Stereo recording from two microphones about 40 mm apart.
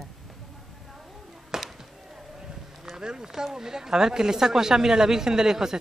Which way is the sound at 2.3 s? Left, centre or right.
Centre.